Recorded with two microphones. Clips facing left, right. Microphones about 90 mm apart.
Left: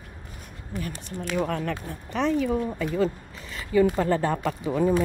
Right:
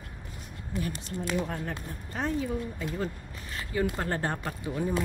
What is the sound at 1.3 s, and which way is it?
Speech, 85° left.